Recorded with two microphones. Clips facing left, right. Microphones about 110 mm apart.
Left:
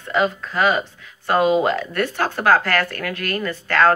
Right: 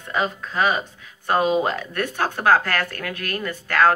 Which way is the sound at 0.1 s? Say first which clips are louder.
Left 4 dB; 20° right (ahead or behind).